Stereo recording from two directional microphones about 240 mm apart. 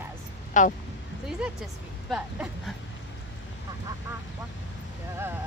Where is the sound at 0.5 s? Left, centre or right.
Left.